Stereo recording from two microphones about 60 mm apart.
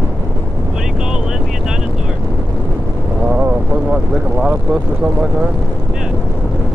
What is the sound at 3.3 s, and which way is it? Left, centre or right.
Vehicle, centre.